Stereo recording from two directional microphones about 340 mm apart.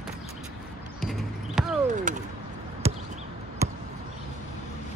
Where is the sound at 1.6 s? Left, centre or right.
Centre.